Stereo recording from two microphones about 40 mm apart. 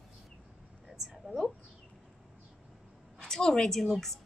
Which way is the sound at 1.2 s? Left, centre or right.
Centre.